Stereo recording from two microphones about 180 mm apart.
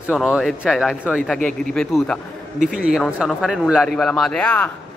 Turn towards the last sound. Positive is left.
turn(degrees=5)  # may be behind; listen again after turning